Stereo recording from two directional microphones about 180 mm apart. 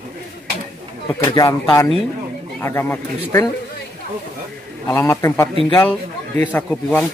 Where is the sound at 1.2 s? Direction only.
20° left (ahead or behind).